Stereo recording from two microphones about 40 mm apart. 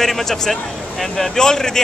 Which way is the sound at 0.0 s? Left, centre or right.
Centre.